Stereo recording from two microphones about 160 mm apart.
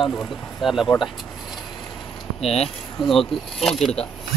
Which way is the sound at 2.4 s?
40° left (ahead or behind).